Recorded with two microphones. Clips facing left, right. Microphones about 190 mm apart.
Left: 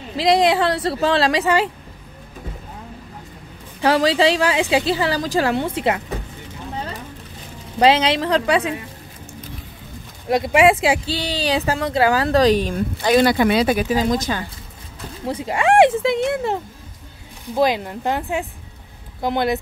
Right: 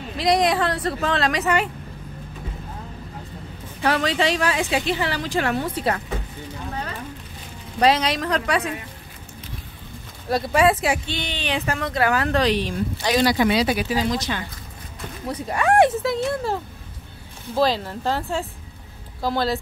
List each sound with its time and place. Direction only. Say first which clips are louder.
0.3 s a woman's voice: left 3 dB; 30° left (ahead or behind)
3.8 s a woman's voice: left 5 dB; 30° left (ahead or behind)
7.8 s a woman's voice: left 4 dB; 25° left (ahead or behind)
10.2 s speech: left 4 dB; 20° left (ahead or behind); by 14.4 s 50° left (ahead or behind)
15.2 s a woman's voice: left 3 dB; 25° left (ahead or behind)
17.6 s a woman's voice: left 2 dB; 15° left (ahead or behind)